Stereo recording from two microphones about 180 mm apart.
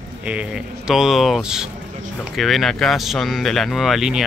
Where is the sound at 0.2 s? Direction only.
5° right (ahead or behind).